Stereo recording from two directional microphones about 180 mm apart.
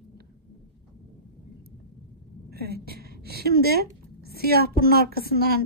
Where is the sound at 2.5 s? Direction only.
60° right (ahead or behind).